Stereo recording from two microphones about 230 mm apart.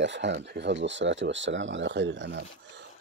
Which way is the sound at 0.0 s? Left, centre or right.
Right.